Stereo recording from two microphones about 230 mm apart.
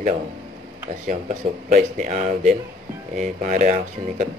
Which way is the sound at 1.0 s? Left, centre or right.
Right.